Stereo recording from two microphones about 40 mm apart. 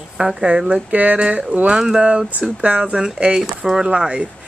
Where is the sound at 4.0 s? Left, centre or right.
Right.